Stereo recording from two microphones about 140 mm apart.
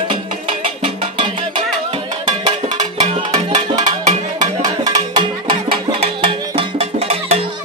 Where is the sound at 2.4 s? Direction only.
30° right (ahead or behind).